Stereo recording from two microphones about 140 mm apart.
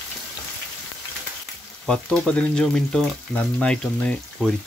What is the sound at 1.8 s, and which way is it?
Speech, 5° left (ahead or behind).